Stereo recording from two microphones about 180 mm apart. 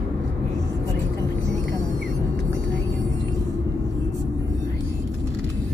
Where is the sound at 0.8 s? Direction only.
15° right (ahead or behind).